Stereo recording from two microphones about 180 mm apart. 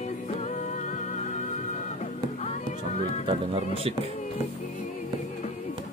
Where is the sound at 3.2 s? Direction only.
30° right (ahead or behind).